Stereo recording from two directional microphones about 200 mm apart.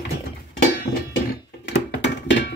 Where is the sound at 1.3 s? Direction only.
60° left (ahead or behind).